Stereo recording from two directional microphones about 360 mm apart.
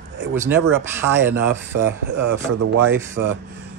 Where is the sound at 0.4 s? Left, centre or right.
Centre.